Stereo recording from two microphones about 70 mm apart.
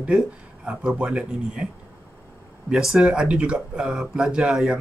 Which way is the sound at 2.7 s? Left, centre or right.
Centre.